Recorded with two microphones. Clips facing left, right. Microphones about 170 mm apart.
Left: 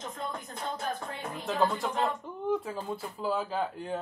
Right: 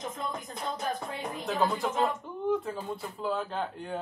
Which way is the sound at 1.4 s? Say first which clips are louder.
Even; centre (ahead or behind).